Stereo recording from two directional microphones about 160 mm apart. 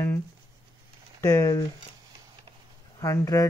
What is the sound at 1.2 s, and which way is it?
Speech, 20° left (ahead or behind).